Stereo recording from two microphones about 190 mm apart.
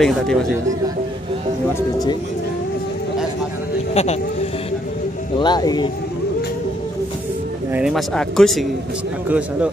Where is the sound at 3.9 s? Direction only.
35° left (ahead or behind).